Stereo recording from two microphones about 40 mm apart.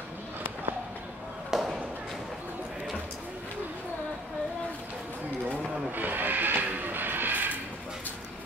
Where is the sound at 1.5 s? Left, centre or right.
Centre.